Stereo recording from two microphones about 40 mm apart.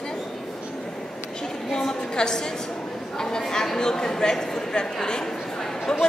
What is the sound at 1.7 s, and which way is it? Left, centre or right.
Speech, centre.